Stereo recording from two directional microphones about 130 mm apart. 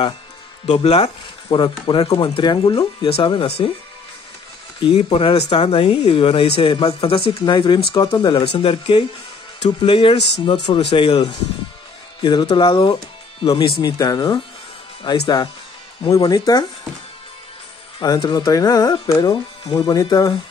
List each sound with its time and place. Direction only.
0.7 s speech: 55° left (ahead or behind)
1.6 s speech: 40° left (ahead or behind)
4.8 s speech: 45° left (ahead or behind)
12.2 s speech: 40° left (ahead or behind)
17.9 s speech: 35° left (ahead or behind)